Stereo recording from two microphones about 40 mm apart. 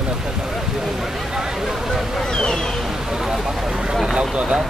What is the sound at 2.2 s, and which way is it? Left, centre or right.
Speech, centre.